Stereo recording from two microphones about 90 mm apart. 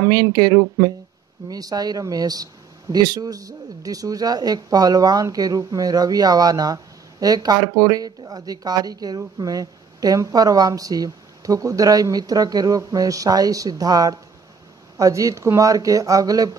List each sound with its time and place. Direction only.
0.0 s speech: 45° right (ahead or behind)